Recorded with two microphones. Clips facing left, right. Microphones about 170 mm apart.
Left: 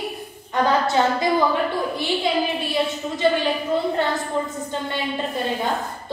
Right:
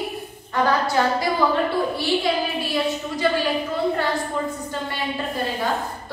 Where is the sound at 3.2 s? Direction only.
25° left (ahead or behind).